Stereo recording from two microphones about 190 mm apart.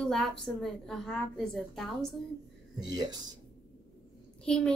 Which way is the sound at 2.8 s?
20° right (ahead or behind).